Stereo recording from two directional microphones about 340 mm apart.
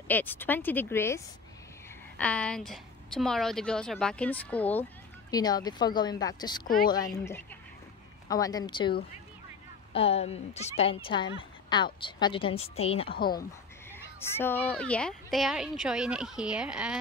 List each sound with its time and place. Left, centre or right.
0.1 s a woman's voice: centre
9.9 s a woman's voice: centre
13.4 s speech: centre